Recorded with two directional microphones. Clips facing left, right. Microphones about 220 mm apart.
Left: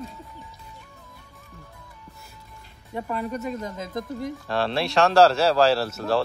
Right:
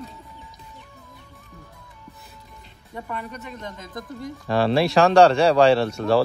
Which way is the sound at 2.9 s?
35° left (ahead or behind).